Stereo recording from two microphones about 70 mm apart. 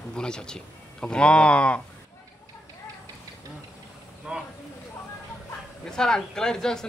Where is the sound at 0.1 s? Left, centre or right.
Centre.